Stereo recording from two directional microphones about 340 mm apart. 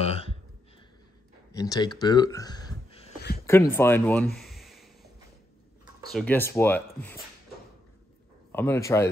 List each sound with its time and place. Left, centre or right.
0.0 s a sound: centre
1.5 s speech: centre
5.9 s speech: centre
8.5 s speech: centre